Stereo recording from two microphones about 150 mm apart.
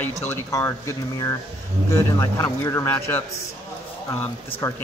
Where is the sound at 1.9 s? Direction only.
20° left (ahead or behind).